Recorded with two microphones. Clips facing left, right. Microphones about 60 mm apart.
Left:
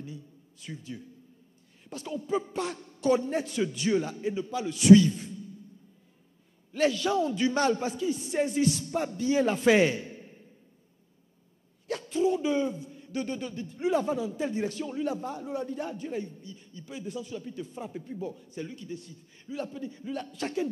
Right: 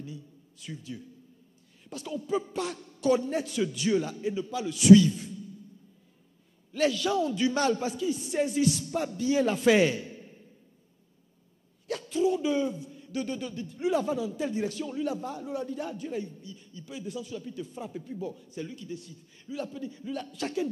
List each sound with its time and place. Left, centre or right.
0.0 s a sound: left
1.9 s a man's voice: left
6.7 s a man's voice: left
11.9 s a man's voice: left